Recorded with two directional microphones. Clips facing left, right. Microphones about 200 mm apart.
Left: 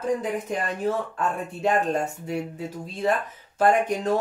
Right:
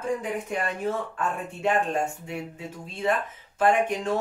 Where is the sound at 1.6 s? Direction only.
40° left (ahead or behind).